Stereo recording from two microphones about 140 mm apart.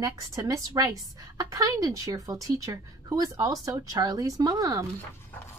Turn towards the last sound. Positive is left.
turn(degrees=-25)  # may be behind; listen again after turning